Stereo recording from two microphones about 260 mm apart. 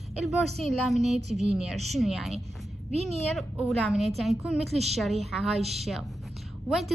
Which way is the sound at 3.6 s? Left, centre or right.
Centre.